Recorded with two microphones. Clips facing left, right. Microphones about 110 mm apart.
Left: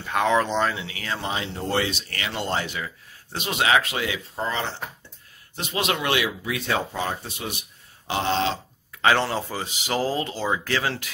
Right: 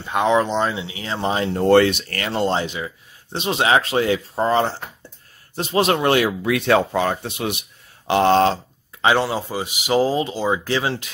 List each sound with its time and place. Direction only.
0.0 s speech: 20° right (ahead or behind)
1.3 s speech: 45° right (ahead or behind)
2.3 s speech: 30° right (ahead or behind)
6.4 s speech: 65° right (ahead or behind)
8.1 s speech: 55° right (ahead or behind)
9.0 s speech: 15° right (ahead or behind)